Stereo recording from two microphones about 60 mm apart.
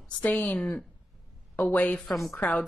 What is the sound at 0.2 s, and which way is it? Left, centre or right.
Speech, left.